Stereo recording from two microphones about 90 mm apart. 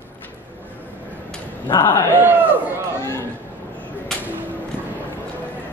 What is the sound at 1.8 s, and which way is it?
Speech, 20° left (ahead or behind).